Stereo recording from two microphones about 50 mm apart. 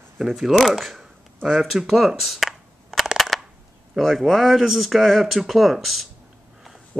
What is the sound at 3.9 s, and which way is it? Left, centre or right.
Speech, centre.